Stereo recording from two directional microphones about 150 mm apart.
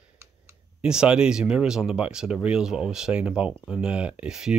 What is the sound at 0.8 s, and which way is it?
Speech, 5° right (ahead or behind).